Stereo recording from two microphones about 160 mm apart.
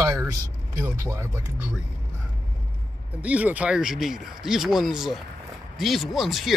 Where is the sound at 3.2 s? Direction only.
10° right (ahead or behind).